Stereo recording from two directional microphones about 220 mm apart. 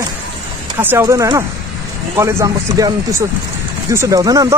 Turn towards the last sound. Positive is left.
turn(degrees=-15)  # may be behind; listen again after turning